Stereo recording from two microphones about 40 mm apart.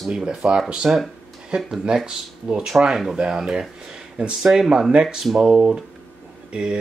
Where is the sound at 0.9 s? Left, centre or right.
Right.